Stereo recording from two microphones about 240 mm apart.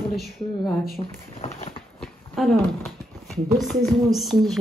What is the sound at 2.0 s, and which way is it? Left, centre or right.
Speech, centre.